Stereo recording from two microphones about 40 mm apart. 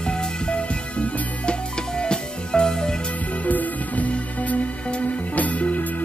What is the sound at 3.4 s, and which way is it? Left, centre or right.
Music, left.